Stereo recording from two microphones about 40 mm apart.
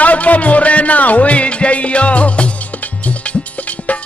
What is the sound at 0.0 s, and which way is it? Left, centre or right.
Music, left.